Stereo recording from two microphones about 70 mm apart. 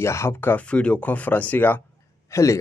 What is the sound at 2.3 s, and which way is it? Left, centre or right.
Speech, left.